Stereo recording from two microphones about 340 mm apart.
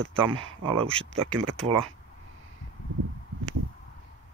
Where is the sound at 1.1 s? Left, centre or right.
Right.